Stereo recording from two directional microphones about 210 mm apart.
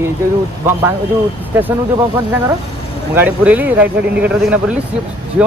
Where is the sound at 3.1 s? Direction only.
10° right (ahead or behind).